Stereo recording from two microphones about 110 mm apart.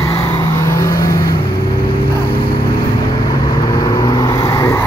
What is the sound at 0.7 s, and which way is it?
Vehicle, 25° left (ahead or behind).